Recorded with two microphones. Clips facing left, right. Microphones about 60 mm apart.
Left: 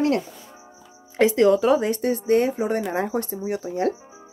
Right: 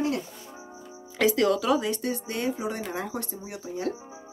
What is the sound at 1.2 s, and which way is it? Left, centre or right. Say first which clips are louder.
Speech: left 6 dB; left.